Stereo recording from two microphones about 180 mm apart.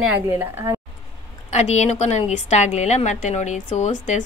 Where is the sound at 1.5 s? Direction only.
40° left (ahead or behind).